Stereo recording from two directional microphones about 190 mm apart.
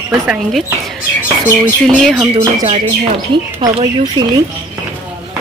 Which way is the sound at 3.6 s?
25° right (ahead or behind).